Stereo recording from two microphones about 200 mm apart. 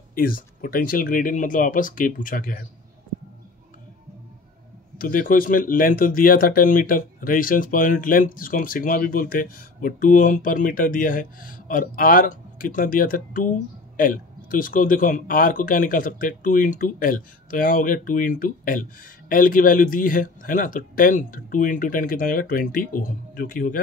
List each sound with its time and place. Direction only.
0.1 s speech: 45° left (ahead or behind)
4.9 s speech: 45° left (ahead or behind)